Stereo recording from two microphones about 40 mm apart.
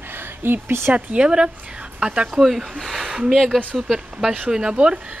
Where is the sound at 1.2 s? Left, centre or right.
Right.